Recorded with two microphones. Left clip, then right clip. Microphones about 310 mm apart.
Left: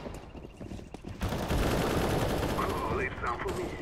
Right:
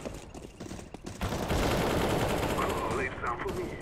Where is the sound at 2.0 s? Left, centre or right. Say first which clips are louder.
Right 1 dB; centre.